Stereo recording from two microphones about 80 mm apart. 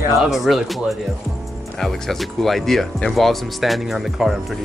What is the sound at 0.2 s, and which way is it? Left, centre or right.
Speech, centre.